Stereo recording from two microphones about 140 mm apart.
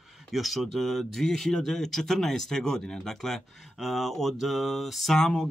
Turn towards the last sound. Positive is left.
turn(degrees=5)  # may be behind; listen again after turning